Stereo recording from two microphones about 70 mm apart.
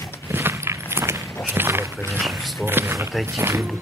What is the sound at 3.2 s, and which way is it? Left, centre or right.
Speech, right.